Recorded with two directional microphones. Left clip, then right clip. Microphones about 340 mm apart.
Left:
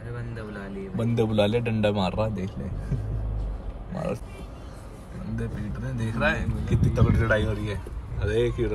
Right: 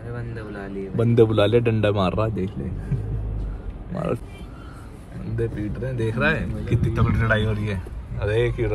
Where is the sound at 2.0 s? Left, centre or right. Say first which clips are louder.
Right 4 dB; right.